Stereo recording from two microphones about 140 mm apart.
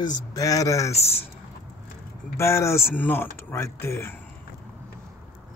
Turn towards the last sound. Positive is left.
turn(degrees=15)  # may be behind; listen again after turning